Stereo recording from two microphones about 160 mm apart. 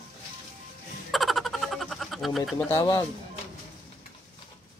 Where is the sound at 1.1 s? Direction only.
Centre (ahead or behind).